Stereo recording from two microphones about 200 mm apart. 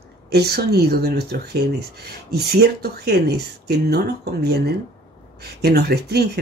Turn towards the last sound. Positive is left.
turn(degrees=-55)  # may be behind; listen again after turning